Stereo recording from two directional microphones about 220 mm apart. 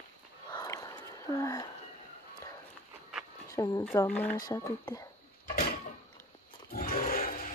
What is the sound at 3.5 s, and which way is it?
Speech, 15° left (ahead or behind).